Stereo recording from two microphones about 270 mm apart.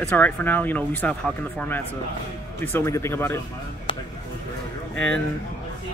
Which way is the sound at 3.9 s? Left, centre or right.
Centre.